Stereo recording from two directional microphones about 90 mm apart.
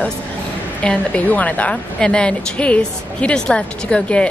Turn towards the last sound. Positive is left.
turn(degrees=10)  # may be behind; listen again after turning